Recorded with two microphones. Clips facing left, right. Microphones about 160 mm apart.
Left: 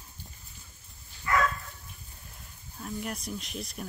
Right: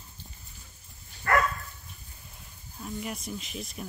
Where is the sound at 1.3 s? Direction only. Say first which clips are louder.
Right 3 dB; 60° right (ahead or behind).